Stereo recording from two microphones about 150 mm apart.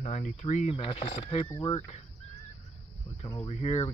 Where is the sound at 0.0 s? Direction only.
50° left (ahead or behind).